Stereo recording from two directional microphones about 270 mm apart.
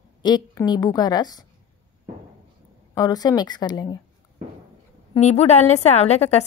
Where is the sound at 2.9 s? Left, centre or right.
Centre.